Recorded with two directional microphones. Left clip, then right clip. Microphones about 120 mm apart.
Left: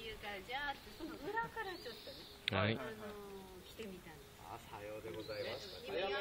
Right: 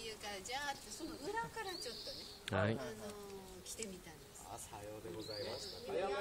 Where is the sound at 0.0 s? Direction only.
15° right (ahead or behind).